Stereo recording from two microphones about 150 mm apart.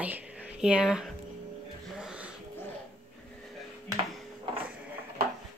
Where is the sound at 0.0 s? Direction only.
10° right (ahead or behind).